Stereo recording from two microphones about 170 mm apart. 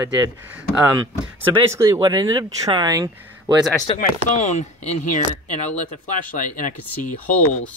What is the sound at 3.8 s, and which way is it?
Speech, 45° left (ahead or behind).